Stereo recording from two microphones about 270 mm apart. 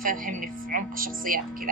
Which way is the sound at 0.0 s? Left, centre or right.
Right.